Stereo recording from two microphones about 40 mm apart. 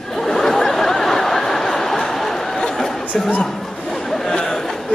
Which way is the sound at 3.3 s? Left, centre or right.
Centre.